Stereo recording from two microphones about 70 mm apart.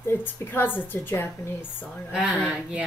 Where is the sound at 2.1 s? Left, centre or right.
Centre.